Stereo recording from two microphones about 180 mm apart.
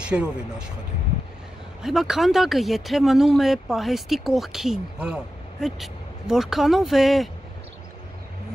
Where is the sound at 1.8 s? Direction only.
Centre (ahead or behind).